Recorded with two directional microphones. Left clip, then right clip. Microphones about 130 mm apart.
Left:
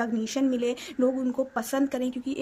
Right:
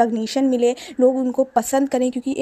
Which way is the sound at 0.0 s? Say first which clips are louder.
Right 9 dB; 40° right (ahead or behind).